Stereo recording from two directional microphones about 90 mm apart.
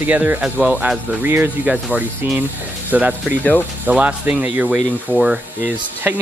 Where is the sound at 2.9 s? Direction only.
15° right (ahead or behind).